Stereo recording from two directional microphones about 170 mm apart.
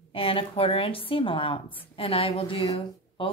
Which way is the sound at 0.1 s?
30° left (ahead or behind).